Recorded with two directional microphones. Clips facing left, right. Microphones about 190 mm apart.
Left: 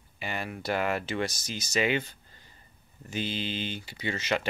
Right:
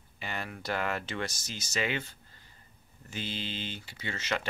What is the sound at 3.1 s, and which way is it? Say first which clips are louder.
Speech: left 5 dB; 15° left (ahead or behind).